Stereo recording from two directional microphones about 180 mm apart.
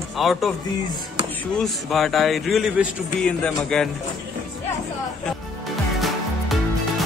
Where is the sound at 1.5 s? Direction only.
Centre (ahead or behind).